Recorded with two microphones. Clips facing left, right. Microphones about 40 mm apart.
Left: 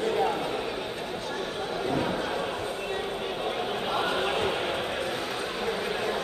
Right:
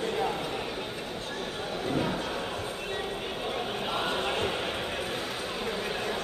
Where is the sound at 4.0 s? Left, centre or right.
Centre.